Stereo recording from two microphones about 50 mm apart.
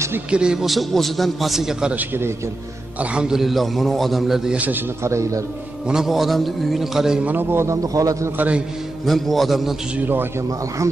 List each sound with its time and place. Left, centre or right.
0.3 s a man's voice: centre
0.7 s a man's voice: centre
3.0 s a man's voice: right
3.3 s a man's voice: centre
4.6 s a man's voice: right
5.0 s a man's voice: right
6.0 s a man's voice: centre
7.2 s a man's voice: right
7.6 s a man's voice: right
8.4 s a man's voice: right
9.0 s a man's voice: centre